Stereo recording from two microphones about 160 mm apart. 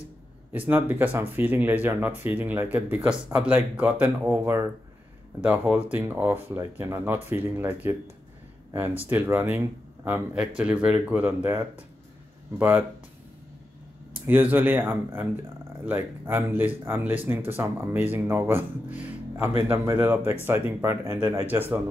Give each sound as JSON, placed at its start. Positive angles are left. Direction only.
{"t": 0.5, "sound": "speech", "side_deg": -10}
{"t": 14.1, "sound": "speech", "side_deg": -10}